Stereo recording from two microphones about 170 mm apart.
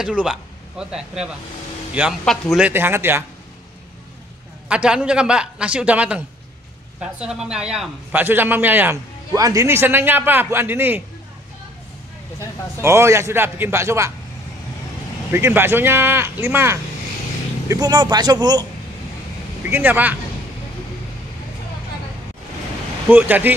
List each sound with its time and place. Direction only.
0.0 s a man's voice: 5° right (ahead or behind)
2.7 s a man's voice: 15° right (ahead or behind)
4.6 s a man's voice: 5° right (ahead or behind)
12.8 s a man's voice: 15° right (ahead or behind)
15.3 s a man's voice: 15° right (ahead or behind)
19.6 s a man's voice: 10° right (ahead or behind)
23.0 s a man's voice: 10° right (ahead or behind)